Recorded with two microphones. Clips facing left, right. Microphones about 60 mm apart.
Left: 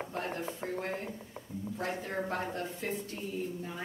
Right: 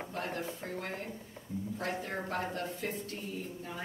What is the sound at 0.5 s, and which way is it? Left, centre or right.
Speech, left.